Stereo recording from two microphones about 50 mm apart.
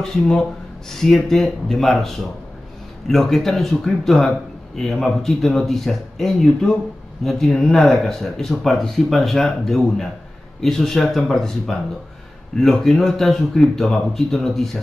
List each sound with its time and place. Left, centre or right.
0.0 s speech: centre